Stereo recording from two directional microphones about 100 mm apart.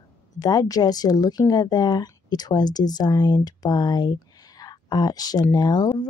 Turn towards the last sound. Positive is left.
turn(degrees=45)  # may be behind; listen again after turning